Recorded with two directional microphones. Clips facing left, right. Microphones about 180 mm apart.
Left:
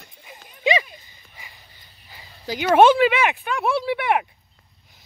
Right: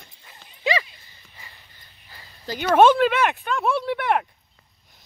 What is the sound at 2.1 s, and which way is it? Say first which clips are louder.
Speech: left 2 dB; 10° left (ahead or behind).